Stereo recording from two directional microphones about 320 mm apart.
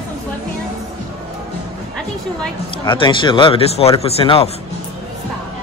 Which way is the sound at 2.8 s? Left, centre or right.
Centre.